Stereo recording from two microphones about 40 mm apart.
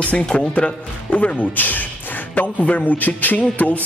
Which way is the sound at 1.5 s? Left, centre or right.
Left.